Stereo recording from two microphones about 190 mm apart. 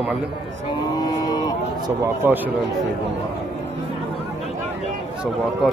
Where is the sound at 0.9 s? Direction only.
20° left (ahead or behind).